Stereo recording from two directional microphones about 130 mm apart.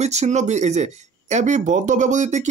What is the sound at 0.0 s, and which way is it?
Speech, 60° right (ahead or behind).